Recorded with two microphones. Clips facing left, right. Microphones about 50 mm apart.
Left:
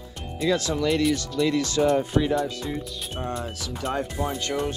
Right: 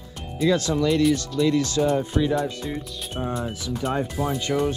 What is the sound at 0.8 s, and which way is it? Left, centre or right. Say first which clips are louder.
Speech: right 2 dB; left.